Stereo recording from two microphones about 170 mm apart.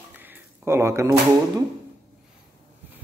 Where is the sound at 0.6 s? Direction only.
15° right (ahead or behind).